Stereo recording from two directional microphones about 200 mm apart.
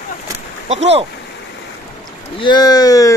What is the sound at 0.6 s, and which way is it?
Speech, 30° right (ahead or behind).